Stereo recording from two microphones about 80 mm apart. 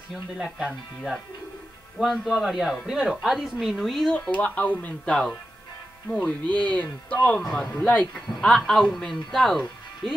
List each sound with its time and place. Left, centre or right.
0.1 s speech: centre
2.0 s speech: centre
4.1 s speech: centre
6.5 s speech: centre